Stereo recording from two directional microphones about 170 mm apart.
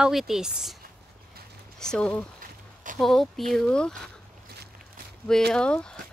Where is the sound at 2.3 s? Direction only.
50° right (ahead or behind).